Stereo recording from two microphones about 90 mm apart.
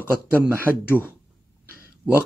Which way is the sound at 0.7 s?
20° right (ahead or behind).